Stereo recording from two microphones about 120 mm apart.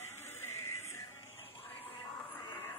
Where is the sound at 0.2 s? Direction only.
20° left (ahead or behind).